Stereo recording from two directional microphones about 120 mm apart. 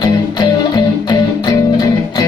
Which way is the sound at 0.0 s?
35° left (ahead or behind).